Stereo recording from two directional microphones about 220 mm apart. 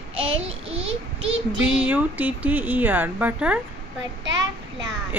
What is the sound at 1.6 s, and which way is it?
Speech, 5° right (ahead or behind).